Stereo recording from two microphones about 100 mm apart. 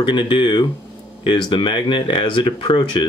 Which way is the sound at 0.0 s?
55° left (ahead or behind).